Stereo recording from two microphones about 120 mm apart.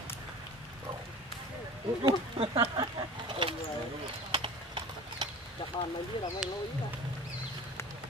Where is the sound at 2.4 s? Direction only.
45° right (ahead or behind).